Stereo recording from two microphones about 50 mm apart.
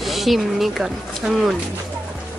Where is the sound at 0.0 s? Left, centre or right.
Centre.